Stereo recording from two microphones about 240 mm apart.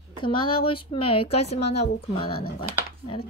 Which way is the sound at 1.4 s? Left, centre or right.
Left.